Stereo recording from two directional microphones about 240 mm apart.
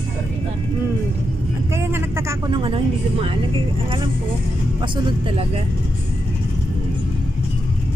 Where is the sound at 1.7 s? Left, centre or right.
Centre.